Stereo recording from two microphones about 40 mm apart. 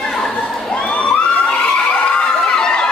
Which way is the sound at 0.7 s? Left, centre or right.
Left.